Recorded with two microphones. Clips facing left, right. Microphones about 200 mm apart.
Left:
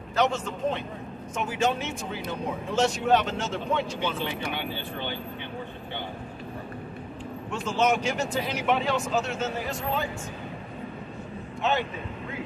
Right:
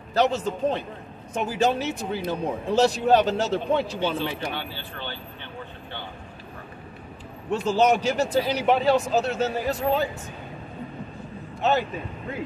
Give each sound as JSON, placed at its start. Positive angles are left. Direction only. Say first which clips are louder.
{"t": 0.1, "sound": "a man's voice", "louder": "right 3 dB", "side_deg": -35}
{"t": 4.6, "sound": "speech", "louder": "left 2 dB", "side_deg": 15}
{"t": 7.5, "sound": "a man's voice", "louder": "right 5 dB", "side_deg": -35}
{"t": 11.6, "sound": "a man's voice", "louder": "right 4 dB", "side_deg": -40}